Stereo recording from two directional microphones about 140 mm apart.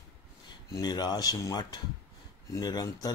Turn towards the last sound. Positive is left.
turn(degrees=30)  # may be behind; listen again after turning